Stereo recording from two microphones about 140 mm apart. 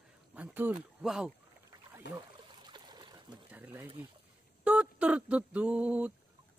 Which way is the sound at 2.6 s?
30° right (ahead or behind).